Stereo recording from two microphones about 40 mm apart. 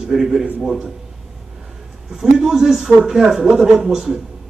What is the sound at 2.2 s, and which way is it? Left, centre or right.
A man's voice, centre.